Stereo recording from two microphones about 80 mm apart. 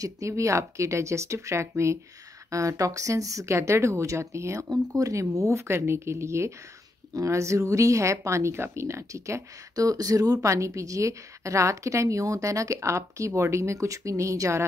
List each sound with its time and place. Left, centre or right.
0.0 s speech: right